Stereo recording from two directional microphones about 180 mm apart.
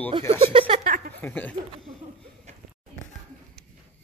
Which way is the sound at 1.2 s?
10° left (ahead or behind).